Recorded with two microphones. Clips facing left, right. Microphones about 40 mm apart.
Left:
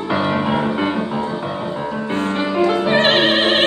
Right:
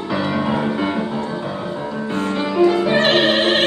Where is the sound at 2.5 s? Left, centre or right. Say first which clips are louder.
Right 1 dB; left.